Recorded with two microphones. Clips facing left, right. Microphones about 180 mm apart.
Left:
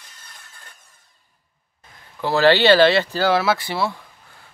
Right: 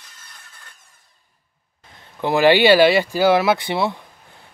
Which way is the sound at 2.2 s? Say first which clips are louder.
Right 1 dB; 15° right (ahead or behind).